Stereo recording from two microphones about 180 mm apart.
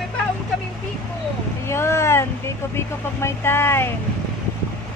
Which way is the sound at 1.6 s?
15° left (ahead or behind).